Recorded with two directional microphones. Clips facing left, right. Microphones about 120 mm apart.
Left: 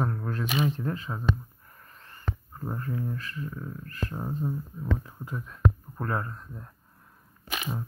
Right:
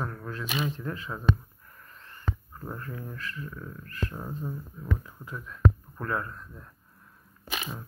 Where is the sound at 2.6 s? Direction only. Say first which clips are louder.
Left 5 dB; 25° left (ahead or behind).